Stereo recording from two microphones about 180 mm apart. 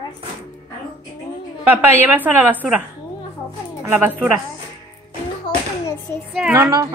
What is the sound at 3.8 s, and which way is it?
Speech, 10° right (ahead or behind).